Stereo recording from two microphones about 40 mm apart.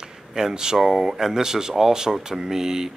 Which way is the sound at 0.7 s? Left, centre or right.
Centre.